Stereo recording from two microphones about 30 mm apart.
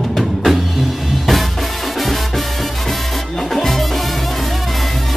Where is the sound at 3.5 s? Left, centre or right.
Centre.